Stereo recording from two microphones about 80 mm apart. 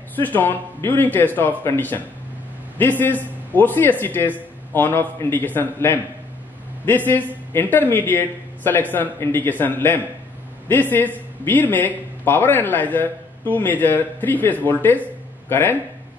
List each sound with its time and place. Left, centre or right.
0.1 s speech: left
7.5 s speech: left